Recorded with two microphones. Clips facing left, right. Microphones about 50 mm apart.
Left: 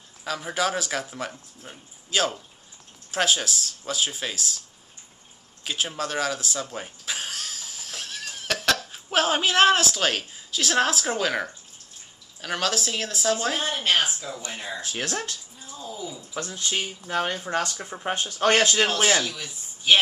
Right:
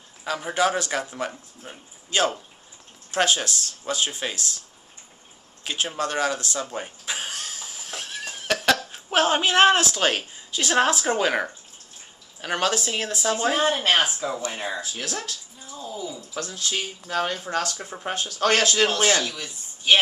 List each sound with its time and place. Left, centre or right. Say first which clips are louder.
0.2 s speech: right 3 dB; centre
5.6 s speech: right 2 dB; centre
6.6 s a sound: right 2 dB; centre
8.9 s a woman's voice: right 2 dB; centre
13.6 s a woman's voice: right 3 dB; right
14.5 s speech: right 4 dB; right
15.6 s bathtub: right 2 dB; centre
16.2 s speech: even; centre